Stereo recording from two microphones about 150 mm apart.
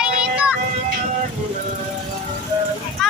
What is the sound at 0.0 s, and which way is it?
Child singing, 5° right (ahead or behind).